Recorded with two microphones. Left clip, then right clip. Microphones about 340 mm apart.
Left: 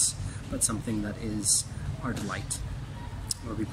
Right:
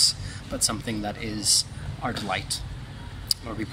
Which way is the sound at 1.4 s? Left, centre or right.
Centre.